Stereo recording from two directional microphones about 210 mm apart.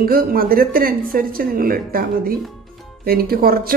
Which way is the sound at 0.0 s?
45° right (ahead or behind).